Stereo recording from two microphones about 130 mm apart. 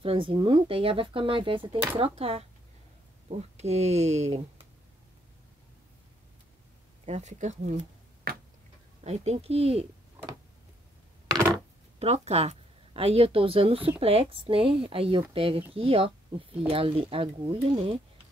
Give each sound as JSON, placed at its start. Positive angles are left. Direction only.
{"t": 0.0, "sound": "speech", "side_deg": -45}
{"t": 7.1, "sound": "speech", "side_deg": -65}
{"t": 9.0, "sound": "speech", "side_deg": -55}
{"t": 12.0, "sound": "speech", "side_deg": -55}